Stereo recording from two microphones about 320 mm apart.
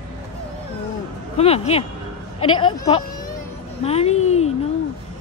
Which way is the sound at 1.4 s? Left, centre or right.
Centre.